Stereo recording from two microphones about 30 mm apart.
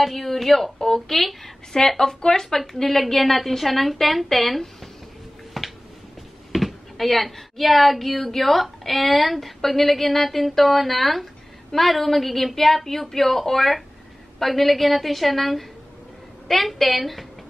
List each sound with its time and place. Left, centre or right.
0.0 s a woman's voice: centre
0.7 s speech: left
1.0 s speech: centre
1.7 s a woman's voice: centre
5.5 s a sound: centre
6.5 s a woman's voice: centre